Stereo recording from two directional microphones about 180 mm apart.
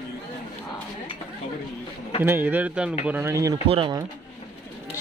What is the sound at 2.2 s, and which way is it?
Speech, 10° right (ahead or behind).